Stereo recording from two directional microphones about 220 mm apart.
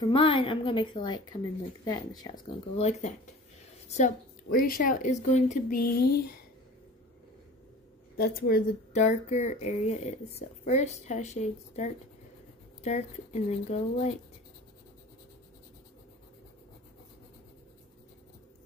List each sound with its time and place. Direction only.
0.0 s a woman's voice: 25° left (ahead or behind); by 6.0 s 45° left (ahead or behind)
8.2 s speech: 40° left (ahead or behind)